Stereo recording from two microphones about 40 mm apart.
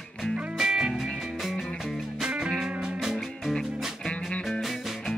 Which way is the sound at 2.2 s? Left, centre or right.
Right.